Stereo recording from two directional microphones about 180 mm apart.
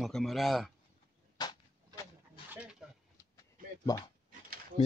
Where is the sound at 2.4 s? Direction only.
10° right (ahead or behind).